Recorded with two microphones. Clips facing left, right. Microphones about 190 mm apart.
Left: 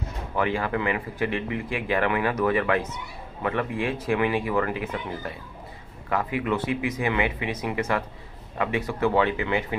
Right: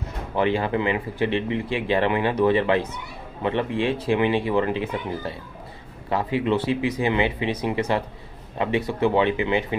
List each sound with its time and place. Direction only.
0.4 s speech: 25° right (ahead or behind)